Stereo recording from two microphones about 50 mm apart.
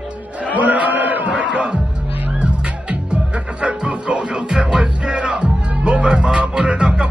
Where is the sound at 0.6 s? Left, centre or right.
Right.